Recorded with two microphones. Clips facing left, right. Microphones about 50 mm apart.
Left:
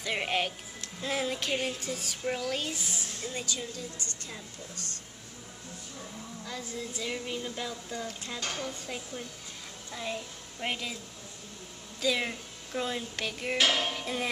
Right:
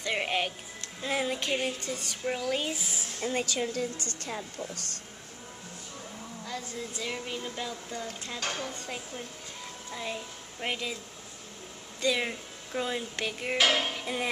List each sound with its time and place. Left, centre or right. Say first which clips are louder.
0.0 s speech: right 1 dB; centre
3.2 s a woman's voice: right 8 dB; right
4.7 s speech: right 1 dB; left
6.4 s speech: right 1 dB; centre
8.4 s dishes: right 2 dB; right
8.8 s speech: even; centre
12.0 s speech: right 1 dB; centre